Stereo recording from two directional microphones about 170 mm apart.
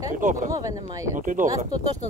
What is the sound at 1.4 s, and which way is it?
Speech, 20° right (ahead or behind).